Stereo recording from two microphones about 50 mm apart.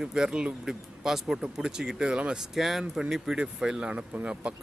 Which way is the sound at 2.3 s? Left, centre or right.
Centre.